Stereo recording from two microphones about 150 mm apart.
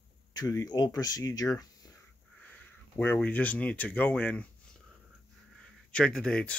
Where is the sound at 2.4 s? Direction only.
10° left (ahead or behind).